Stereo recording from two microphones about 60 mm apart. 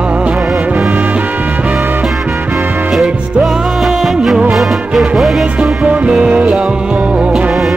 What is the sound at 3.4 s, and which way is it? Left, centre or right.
Music, centre.